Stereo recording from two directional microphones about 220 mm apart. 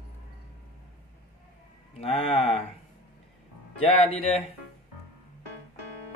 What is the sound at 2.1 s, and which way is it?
Speech, 25° left (ahead or behind).